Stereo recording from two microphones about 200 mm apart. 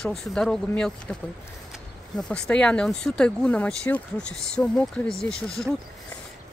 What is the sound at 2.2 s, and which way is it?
Speech, 5° left (ahead or behind).